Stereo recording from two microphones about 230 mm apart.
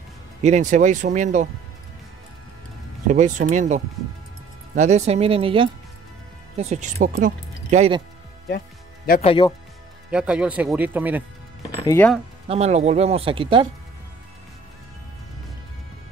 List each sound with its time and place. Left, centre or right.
0.4 s speech: right
3.1 s speech: right
8.5 s music: left
9.2 s speech: left
10.1 s speech: centre
11.8 s speech: centre
12.4 s speech: right